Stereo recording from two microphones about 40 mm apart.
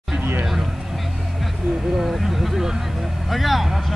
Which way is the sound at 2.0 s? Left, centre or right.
Centre.